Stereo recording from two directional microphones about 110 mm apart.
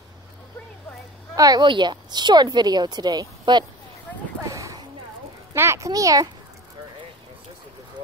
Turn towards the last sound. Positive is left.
turn(degrees=-30)  # may be behind; listen again after turning